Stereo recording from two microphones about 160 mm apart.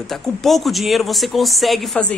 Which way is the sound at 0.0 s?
Centre (ahead or behind).